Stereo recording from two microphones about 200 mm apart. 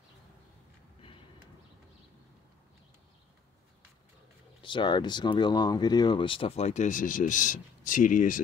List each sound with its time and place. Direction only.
4.6 s speech: 25° left (ahead or behind); by 8.4 s 40° left (ahead or behind)